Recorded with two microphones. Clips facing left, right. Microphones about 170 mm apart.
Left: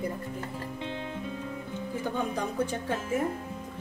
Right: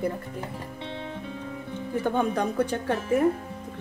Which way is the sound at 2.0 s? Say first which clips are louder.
Right 6 dB; 60° right (ahead or behind).